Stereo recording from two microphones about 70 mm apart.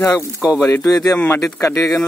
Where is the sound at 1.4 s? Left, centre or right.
Left.